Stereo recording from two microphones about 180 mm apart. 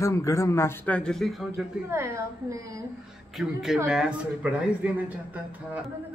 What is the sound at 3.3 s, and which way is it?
A woman's voice, centre (ahead or behind).